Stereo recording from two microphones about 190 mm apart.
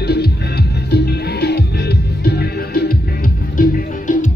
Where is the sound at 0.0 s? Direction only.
55° left (ahead or behind).